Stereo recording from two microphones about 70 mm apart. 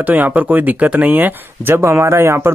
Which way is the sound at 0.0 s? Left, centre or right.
Right.